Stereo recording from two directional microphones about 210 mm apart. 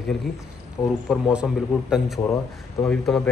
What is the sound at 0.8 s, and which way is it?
Speech, 10° left (ahead or behind).